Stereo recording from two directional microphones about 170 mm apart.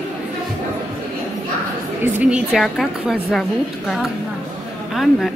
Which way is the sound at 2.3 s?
Centre (ahead or behind).